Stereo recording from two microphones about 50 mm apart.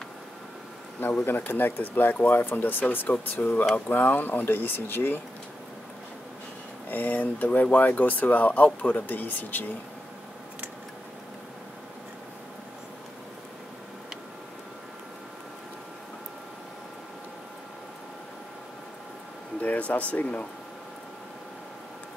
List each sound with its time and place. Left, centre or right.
1.5 s speech: left
6.9 s speech: left
19.6 s speech: left